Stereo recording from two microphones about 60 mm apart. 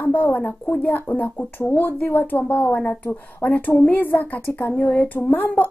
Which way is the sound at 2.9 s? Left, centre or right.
Left.